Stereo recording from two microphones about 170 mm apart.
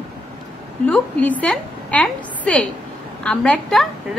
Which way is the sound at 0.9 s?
10° left (ahead or behind).